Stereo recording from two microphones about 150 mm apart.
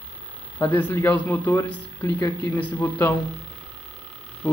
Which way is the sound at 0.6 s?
10° left (ahead or behind).